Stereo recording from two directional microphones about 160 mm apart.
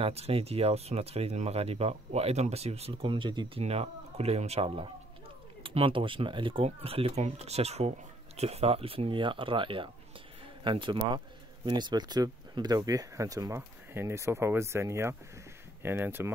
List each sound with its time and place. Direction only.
0.0 s speech: 40° right (ahead or behind); by 16.3 s 15° right (ahead or behind)